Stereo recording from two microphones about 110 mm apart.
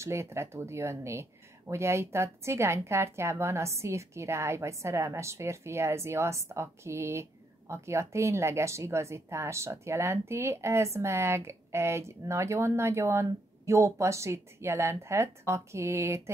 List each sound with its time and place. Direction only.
0.0 s speech: 25° right (ahead or behind)